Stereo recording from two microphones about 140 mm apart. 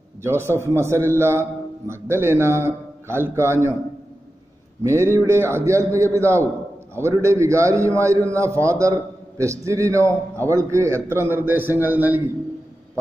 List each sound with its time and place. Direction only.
0.2 s a man's voice: 20° right (ahead or behind)
4.8 s a man's voice: 20° right (ahead or behind)